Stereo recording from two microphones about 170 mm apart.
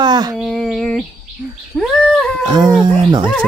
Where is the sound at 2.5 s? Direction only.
25° right (ahead or behind).